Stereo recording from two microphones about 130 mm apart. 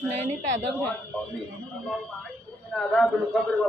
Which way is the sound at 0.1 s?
55° right (ahead or behind).